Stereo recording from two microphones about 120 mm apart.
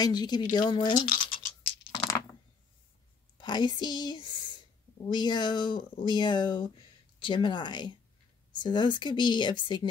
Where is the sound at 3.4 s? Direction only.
40° left (ahead or behind).